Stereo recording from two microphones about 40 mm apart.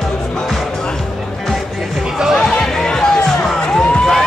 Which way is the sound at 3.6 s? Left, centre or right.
Left.